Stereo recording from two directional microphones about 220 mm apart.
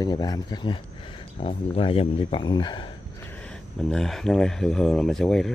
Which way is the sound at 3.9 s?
Centre (ahead or behind).